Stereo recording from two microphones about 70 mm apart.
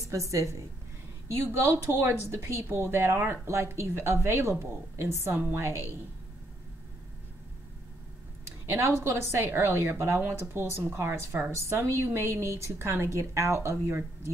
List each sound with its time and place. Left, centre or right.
0.1 s a woman's voice: right
8.6 s speech: right